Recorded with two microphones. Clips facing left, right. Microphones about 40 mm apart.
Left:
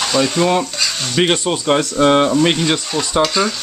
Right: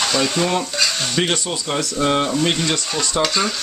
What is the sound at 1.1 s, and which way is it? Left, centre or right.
Speech, left.